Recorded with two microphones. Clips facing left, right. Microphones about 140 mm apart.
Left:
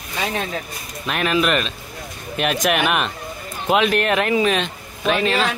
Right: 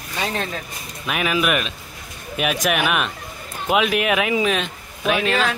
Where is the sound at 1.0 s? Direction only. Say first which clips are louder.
Left 2 dB; 5° right (ahead or behind).